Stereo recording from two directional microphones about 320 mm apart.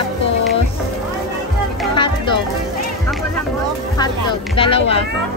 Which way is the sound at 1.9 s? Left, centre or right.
Centre.